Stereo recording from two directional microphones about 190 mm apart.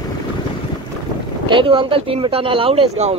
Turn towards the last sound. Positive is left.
turn(degrees=-30)  # may be behind; listen again after turning